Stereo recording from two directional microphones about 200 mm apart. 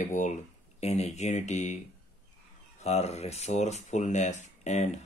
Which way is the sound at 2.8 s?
35° left (ahead or behind).